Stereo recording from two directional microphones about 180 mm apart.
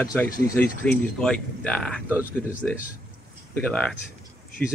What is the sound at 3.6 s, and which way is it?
Speech, 5° left (ahead or behind).